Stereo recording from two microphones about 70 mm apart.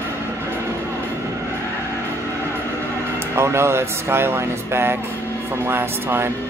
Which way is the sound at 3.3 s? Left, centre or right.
Right.